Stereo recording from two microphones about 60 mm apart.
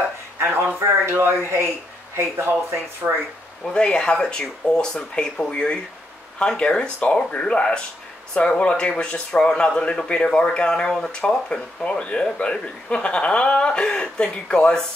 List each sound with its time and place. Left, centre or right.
0.4 s speech: right
3.6 s speech: centre